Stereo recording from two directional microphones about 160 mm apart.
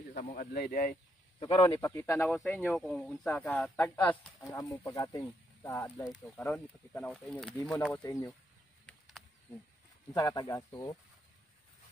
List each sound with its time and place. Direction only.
0.1 s speech: 65° left (ahead or behind)
1.4 s speech: 30° left (ahead or behind)
1.8 s speech: 15° left (ahead or behind)
2.2 s speech: centre (ahead or behind)
4.5 s speech: 20° left (ahead or behind)
6.1 s speech: 5° left (ahead or behind)
8.0 s speech: 25° left (ahead or behind)
8.8 s a sound: centre (ahead or behind)
10.1 s speech: 25° left (ahead or behind)